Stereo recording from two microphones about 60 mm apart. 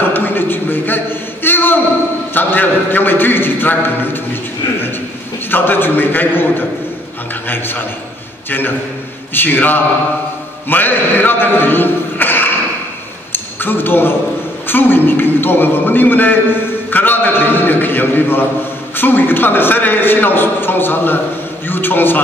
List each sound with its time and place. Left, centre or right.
0.1 s a sound: left
2.3 s a man's voice: left
5.5 s a man's voice: left
7.4 s a man's voice: left
13.3 s a sound: left
14.7 s a man's voice: left